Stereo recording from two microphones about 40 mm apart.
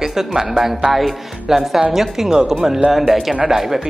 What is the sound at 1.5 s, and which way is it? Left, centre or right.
A woman's voice, centre.